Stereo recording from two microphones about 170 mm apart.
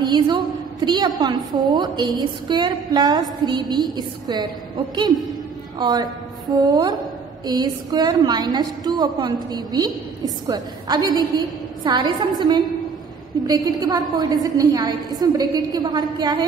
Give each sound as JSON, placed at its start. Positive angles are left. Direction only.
{"t": 0.0, "sound": "a woman's voice", "side_deg": -25}
{"t": 5.8, "sound": "a woman's voice", "side_deg": -25}